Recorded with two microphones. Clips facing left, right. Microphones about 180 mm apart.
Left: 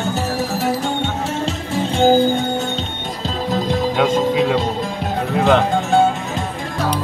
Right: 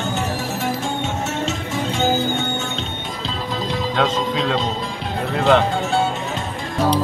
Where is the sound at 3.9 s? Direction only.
10° left (ahead or behind).